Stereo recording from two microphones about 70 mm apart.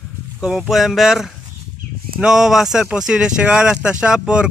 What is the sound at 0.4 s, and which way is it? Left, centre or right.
Speech, centre.